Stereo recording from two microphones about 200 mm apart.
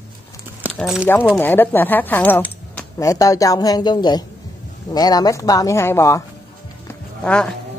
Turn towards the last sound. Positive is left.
turn(degrees=5)  # may be behind; listen again after turning